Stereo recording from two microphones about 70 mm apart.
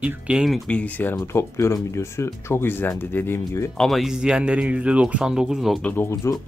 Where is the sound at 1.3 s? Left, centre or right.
Left.